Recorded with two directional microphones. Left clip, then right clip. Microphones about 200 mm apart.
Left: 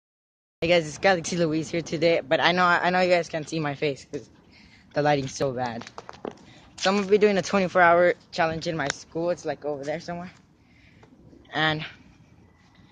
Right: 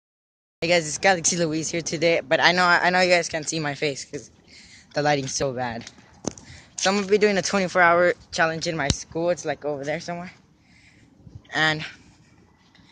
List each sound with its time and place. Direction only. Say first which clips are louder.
0.6 s speech: right 1 dB; 5° right (ahead or behind)
6.9 s speech: even; 10° right (ahead or behind); by 10.1 s 35° right (ahead or behind)
11.4 s speech: right 3 dB; 5° right (ahead or behind)